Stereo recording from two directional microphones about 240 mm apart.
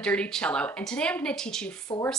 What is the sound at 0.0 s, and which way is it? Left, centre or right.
Speech, centre.